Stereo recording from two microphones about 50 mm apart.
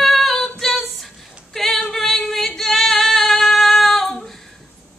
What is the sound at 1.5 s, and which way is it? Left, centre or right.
Singing, centre.